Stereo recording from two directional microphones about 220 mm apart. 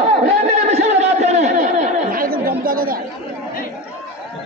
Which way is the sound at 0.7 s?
30° right (ahead or behind).